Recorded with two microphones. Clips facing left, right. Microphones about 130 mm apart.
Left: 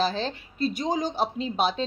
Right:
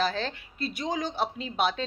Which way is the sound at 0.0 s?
30° left (ahead or behind).